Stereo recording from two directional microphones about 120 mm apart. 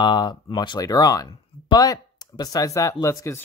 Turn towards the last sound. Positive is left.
turn(degrees=25)  # may be behind; listen again after turning